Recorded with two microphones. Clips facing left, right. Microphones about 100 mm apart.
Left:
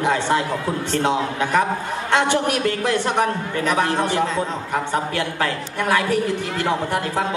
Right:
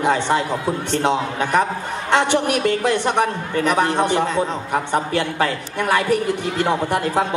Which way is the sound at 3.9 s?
20° right (ahead or behind).